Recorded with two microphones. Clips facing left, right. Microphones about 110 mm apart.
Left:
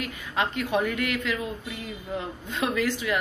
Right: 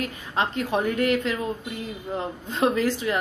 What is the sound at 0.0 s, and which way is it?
A woman's voice, 35° right (ahead or behind).